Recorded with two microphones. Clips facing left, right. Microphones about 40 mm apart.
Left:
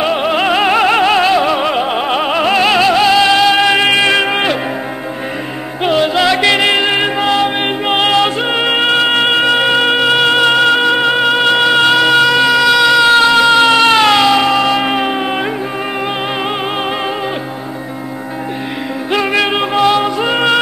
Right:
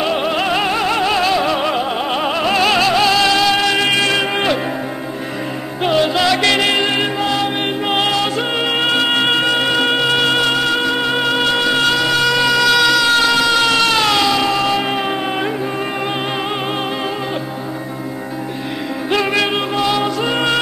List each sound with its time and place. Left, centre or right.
0.0 s music: centre
5.9 s music: centre
7.2 s music: left
19.1 s music: centre